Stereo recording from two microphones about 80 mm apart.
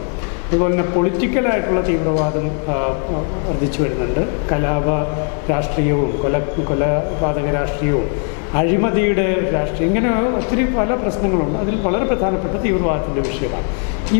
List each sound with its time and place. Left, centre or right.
0.6 s a man's voice: left
4.5 s a man's voice: left